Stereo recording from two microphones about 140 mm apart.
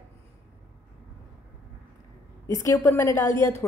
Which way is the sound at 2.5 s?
20° left (ahead or behind).